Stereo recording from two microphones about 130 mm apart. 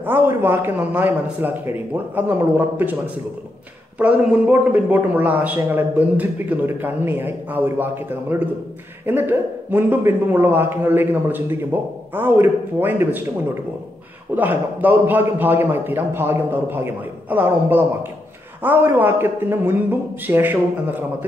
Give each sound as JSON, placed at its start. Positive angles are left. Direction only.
{"t": 0.0, "sound": "a man's voice", "side_deg": -15}
{"t": 4.0, "sound": "a man's voice", "side_deg": -10}
{"t": 14.3, "sound": "a man's voice", "side_deg": -15}